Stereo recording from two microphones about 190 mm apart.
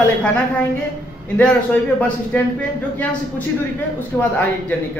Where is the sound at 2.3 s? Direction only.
5° left (ahead or behind).